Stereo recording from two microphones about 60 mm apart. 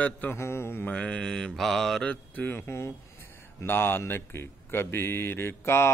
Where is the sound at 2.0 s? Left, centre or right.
Left.